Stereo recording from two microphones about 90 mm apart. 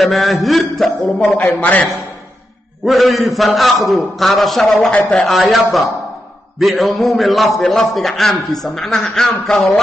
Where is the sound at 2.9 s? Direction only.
Centre (ahead or behind).